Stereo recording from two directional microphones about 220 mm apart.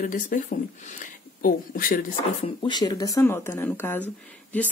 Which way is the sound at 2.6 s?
20° left (ahead or behind).